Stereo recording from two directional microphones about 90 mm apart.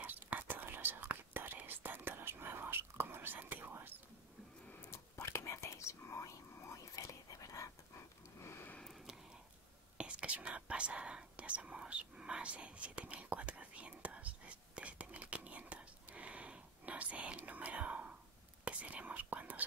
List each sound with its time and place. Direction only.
0.0 s whispering: 20° right (ahead or behind)
4.9 s whispering: 30° left (ahead or behind)
7.0 s dog: 35° left (ahead or behind)
8.4 s sniff: 25° left (ahead or behind)
8.7 s a sound: centre (ahead or behind)
9.9 s whispering: 10° right (ahead or behind)